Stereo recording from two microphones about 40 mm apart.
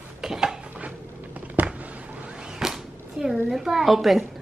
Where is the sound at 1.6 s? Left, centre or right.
Right.